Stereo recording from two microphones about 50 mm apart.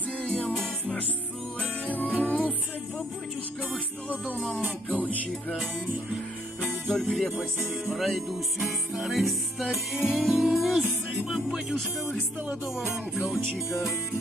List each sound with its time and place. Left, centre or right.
0.2 s music: left
1.9 s music: left
3.7 s music: left
6.9 s music: centre
11.3 s speech: centre
12.7 s music: centre